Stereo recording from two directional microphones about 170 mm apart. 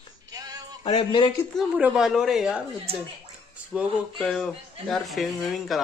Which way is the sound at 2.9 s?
35° right (ahead or behind).